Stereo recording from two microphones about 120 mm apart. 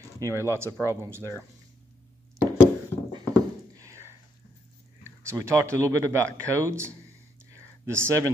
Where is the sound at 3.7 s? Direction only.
25° right (ahead or behind).